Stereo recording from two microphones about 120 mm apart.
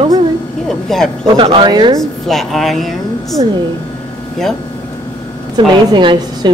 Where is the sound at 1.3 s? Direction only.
45° right (ahead or behind).